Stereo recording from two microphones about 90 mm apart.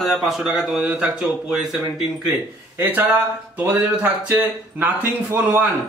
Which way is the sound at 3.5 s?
20° right (ahead or behind).